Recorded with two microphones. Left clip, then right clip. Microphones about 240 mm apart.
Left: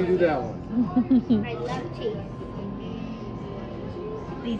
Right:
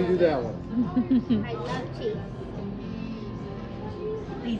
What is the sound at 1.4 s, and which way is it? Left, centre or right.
Speech, centre.